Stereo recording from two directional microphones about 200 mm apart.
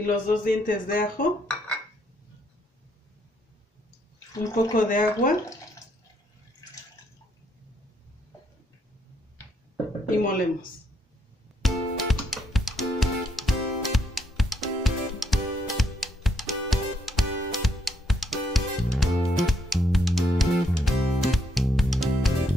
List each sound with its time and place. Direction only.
0.0 s speech: 45° left (ahead or behind)
4.7 s speech: 45° left (ahead or behind)
10.1 s speech: 45° left (ahead or behind)
11.6 s music: centre (ahead or behind)